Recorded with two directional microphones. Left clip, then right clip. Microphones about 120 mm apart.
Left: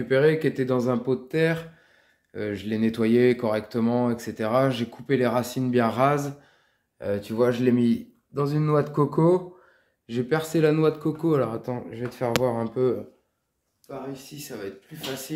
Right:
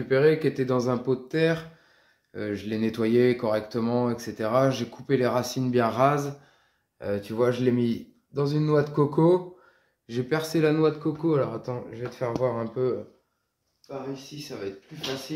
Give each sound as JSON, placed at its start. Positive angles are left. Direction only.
{"t": 0.1, "sound": "speech", "side_deg": 25}
{"t": 10.8, "sound": "speech", "side_deg": 50}
{"t": 14.5, "sound": "speech", "side_deg": 65}